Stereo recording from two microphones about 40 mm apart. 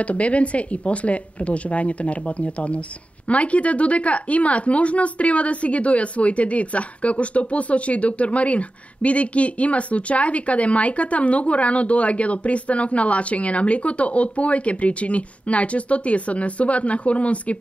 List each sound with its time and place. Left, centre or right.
0.0 s speech: left